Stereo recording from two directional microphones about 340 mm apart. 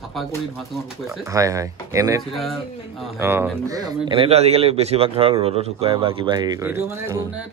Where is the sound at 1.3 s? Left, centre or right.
Centre.